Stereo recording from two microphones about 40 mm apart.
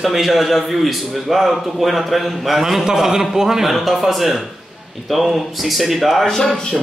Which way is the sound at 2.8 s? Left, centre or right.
Centre.